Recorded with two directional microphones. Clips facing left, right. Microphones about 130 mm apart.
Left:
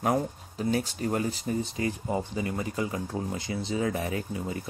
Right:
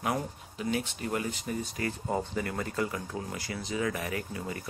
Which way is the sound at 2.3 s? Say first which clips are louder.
Left 2 dB; 15° left (ahead or behind).